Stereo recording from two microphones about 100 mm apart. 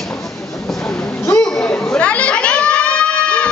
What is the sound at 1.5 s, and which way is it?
Crowd, 5° left (ahead or behind).